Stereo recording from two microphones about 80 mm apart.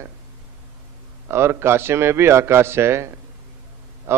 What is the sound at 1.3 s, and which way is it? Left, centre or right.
A man's voice, right.